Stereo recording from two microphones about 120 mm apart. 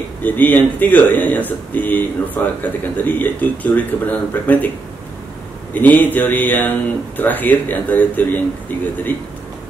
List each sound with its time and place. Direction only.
0.2 s speech: 15° left (ahead or behind)
5.7 s speech: 15° left (ahead or behind)